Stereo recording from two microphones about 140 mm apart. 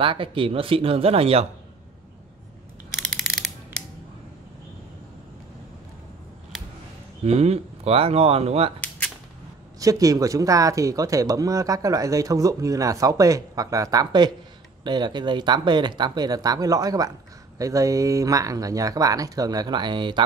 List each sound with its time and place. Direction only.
0.0 s speech: 40° right (ahead or behind)
3.2 s a sound: centre (ahead or behind)
7.2 s speech: 50° right (ahead or behind)
9.8 s speech: 25° right (ahead or behind)